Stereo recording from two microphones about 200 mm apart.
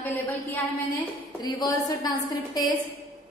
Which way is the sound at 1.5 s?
20° left (ahead or behind).